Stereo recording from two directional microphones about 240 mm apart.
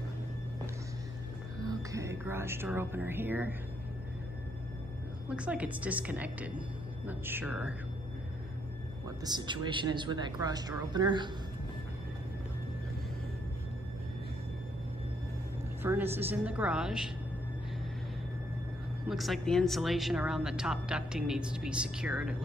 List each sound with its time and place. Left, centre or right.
1.6 s speech: centre
5.3 s a woman's voice: centre
9.0 s a woman's voice: centre
15.8 s speech: centre
19.0 s speech: centre